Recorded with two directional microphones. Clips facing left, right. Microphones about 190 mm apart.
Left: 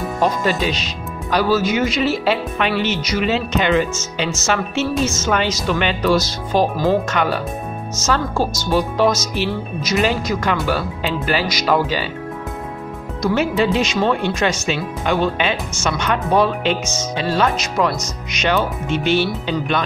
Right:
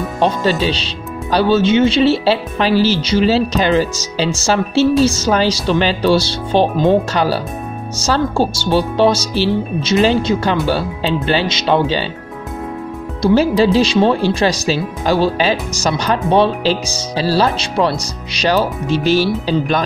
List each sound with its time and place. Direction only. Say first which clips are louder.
0.2 s speech: right 3 dB; 30° right (ahead or behind)
13.2 s speech: right 5 dB; 35° right (ahead or behind)